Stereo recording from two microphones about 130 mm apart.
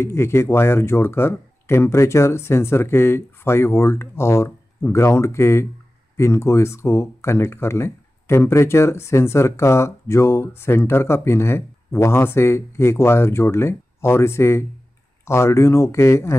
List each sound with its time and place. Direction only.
0.0 s speech: 20° left (ahead or behind)